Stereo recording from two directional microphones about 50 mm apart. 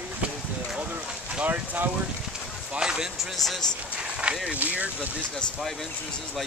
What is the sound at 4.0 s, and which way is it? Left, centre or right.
Speech, right.